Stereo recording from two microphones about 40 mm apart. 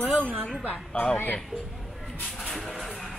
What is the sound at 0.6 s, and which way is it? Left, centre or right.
Speech, left.